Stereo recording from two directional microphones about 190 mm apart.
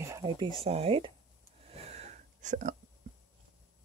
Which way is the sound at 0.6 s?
30° right (ahead or behind).